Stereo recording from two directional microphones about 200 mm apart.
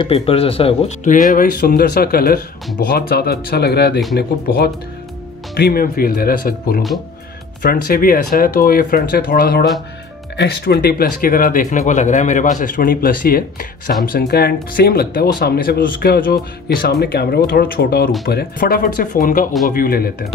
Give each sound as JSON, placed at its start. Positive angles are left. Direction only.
{"t": 0.0, "sound": "speech", "side_deg": 30}